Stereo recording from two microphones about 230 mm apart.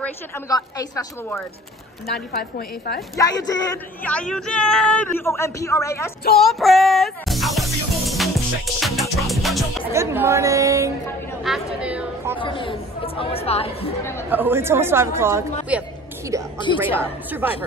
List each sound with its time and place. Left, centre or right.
0.0 s a man's voice: centre
2.3 s a woman's voice: left
3.2 s a man's voice: centre
4.1 s a man's voice: centre
6.4 s music: centre
9.9 s speech: centre
11.4 s chatter: centre
12.4 s speech: left
14.3 s speech: centre